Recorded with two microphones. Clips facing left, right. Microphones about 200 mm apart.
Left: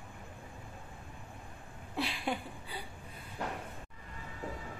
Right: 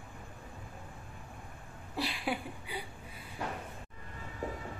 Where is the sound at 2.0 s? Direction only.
Centre (ahead or behind).